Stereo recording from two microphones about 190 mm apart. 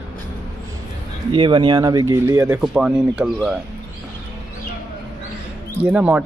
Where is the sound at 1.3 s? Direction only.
25° right (ahead or behind).